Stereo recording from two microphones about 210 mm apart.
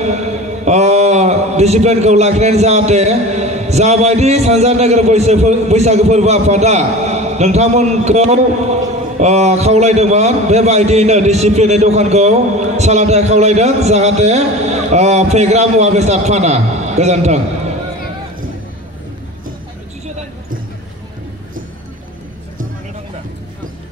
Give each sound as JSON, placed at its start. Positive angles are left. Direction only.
{"t": 0.0, "sound": "mantra", "side_deg": -30}
{"t": 9.2, "sound": "a man's voice", "side_deg": -30}